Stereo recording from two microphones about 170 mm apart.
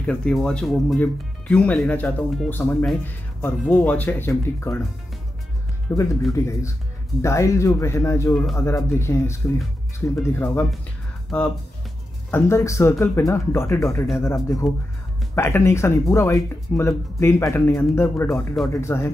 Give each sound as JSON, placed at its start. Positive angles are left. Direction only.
{"t": 0.0, "sound": "speech", "side_deg": 5}
{"t": 5.9, "sound": "speech", "side_deg": 15}